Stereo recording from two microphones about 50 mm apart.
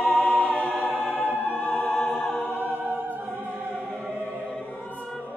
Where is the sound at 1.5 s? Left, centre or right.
Left.